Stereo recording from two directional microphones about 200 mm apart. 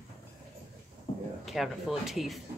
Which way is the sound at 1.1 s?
35° left (ahead or behind).